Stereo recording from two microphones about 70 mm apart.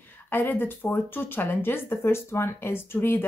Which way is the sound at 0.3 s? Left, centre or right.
Left.